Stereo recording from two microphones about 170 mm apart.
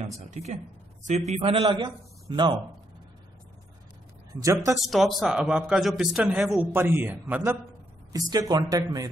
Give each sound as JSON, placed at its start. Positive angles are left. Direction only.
{"t": 0.2, "sound": "speech", "side_deg": -45}
{"t": 4.3, "sound": "speech", "side_deg": -20}
{"t": 4.7, "sound": "speech", "side_deg": 0}
{"t": 8.1, "sound": "speech", "side_deg": -20}